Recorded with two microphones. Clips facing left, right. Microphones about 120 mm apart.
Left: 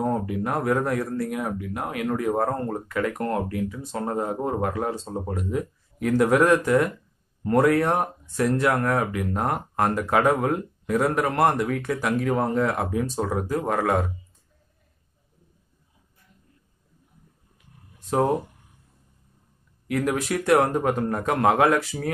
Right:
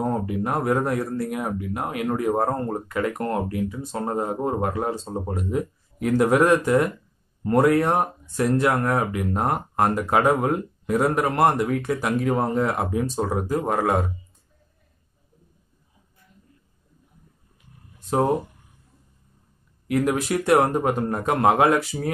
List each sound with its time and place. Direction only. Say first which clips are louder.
0.1 s speech: right 1 dB; 15° right (ahead or behind)
19.9 s speech: right 2 dB; 20° right (ahead or behind)